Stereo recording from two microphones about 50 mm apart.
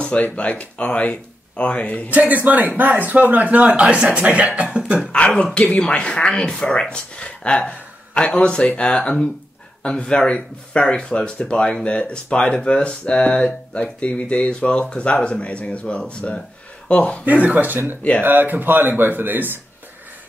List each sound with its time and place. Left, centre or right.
0.2 s speech: left
2.0 s speech: right
5.4 s speech: centre
17.2 s speech: right